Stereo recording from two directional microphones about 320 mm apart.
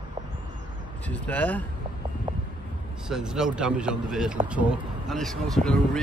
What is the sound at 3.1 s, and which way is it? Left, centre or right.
Speech, centre.